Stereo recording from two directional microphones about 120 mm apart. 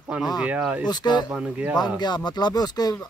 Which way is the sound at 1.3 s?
10° right (ahead or behind).